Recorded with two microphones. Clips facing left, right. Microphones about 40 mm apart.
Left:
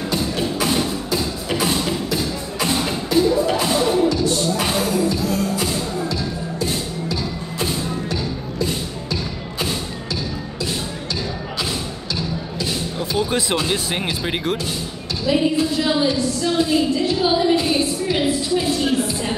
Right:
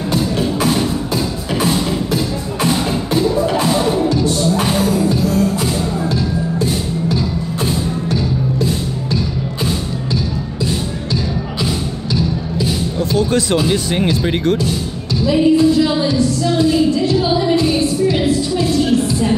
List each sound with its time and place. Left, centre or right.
2.6 s music: right
12.6 s a woman's voice: centre